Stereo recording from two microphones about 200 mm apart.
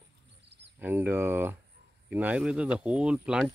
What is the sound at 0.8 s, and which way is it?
Speech, 10° right (ahead or behind).